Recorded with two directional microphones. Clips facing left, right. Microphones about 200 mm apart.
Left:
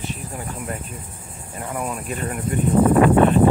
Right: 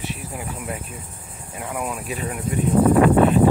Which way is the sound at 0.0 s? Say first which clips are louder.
Even; 5° right (ahead or behind).